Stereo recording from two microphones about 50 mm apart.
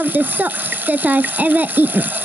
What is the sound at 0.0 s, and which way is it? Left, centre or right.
Speech, right.